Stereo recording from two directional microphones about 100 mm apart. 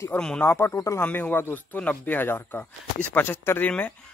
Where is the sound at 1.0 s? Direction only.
15° left (ahead or behind).